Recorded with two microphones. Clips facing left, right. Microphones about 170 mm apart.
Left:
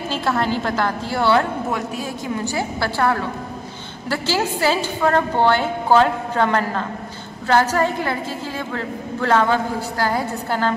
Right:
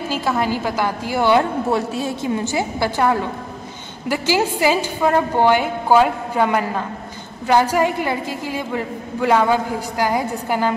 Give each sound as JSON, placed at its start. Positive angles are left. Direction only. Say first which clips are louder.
{"t": 0.1, "sound": "a woman's voice", "louder": "even", "side_deg": -10}
{"t": 1.7, "sound": "a woman's voice", "louder": "right 4 dB", "side_deg": -25}